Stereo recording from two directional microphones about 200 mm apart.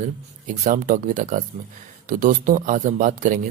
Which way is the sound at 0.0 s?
40° right (ahead or behind).